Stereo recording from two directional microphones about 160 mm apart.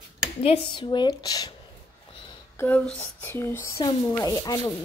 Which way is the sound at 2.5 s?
10° left (ahead or behind).